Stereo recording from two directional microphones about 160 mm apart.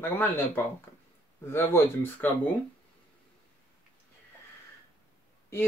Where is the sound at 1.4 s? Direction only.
15° left (ahead or behind).